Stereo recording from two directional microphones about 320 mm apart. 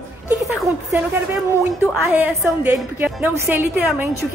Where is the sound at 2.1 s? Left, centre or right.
Centre.